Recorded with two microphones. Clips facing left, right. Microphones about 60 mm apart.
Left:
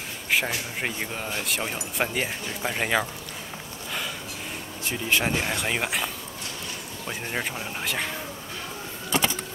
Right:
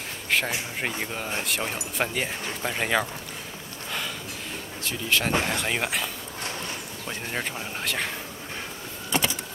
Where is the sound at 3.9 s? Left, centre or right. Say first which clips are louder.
Even; centre.